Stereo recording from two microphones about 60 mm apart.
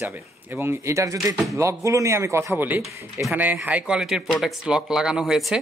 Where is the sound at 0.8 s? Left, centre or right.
Right.